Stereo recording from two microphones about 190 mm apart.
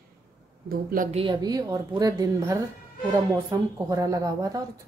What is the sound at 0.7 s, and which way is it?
Speech, 50° right (ahead or behind).